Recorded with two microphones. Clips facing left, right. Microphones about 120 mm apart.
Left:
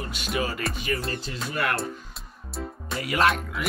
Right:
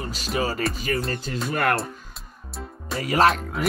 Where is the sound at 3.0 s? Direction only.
35° right (ahead or behind).